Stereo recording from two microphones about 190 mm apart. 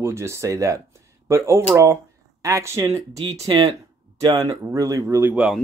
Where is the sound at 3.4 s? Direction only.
25° right (ahead or behind).